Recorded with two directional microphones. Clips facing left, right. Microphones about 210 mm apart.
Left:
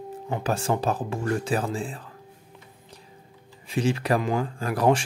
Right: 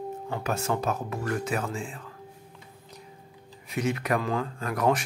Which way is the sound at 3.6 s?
30° left (ahead or behind).